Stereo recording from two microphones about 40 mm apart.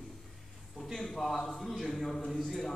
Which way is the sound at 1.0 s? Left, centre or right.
Centre.